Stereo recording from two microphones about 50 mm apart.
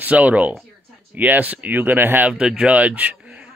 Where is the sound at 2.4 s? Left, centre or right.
Right.